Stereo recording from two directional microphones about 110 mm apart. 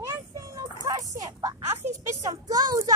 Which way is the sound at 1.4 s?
25° right (ahead or behind).